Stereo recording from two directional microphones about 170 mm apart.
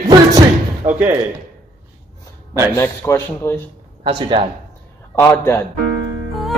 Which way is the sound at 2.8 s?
15° left (ahead or behind).